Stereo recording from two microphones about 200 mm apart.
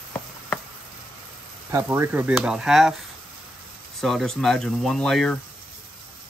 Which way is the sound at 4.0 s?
Centre (ahead or behind).